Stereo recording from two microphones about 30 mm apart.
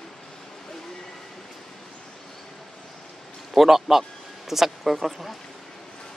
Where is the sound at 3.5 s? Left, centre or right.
Centre.